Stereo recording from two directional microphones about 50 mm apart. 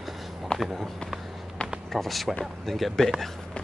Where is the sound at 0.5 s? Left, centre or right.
Centre.